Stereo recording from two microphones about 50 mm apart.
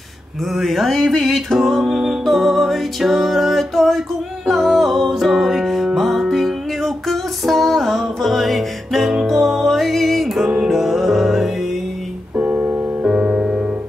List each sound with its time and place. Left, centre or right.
0.4 s music: centre
12.4 s keyboard: right
13.0 s music: centre